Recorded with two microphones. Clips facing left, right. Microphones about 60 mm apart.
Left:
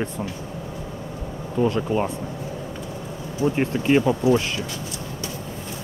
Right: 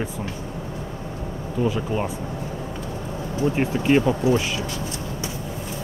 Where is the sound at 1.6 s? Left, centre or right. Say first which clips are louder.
Left 2 dB; centre.